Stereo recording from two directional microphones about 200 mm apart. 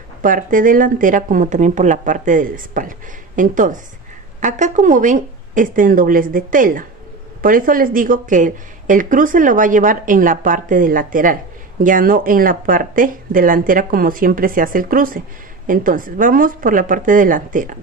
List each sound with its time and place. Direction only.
0.2 s speech: 40° right (ahead or behind)